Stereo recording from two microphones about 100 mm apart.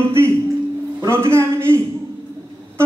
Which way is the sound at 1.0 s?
25° right (ahead or behind).